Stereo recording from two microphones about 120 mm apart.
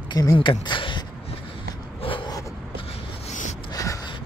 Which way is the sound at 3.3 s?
75° left (ahead or behind).